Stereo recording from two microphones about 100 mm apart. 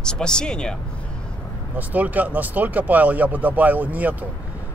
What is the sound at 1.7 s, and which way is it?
Speech, 15° right (ahead or behind).